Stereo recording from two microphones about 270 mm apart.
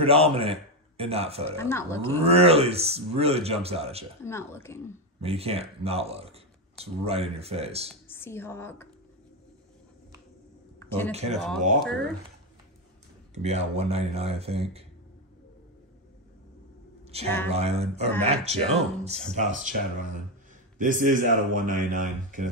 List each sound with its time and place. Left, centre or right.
0.0 s a man's voice: right
1.6 s speech: centre
2.2 s a man's voice: right
4.2 s speech: centre
5.2 s a man's voice: right
7.9 s a woman's voice: centre
10.8 s a sound: centre
11.1 s a man's voice: right
11.3 s speech: centre
13.3 s a man's voice: right
17.1 s a man's voice: right